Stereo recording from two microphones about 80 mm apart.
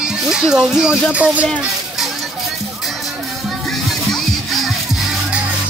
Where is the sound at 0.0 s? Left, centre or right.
Centre.